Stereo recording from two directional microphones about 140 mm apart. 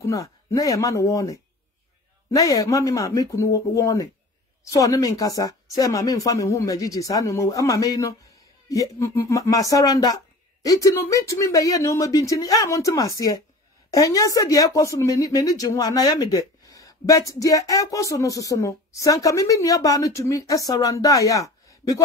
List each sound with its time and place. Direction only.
0.0 s speech: 20° left (ahead or behind)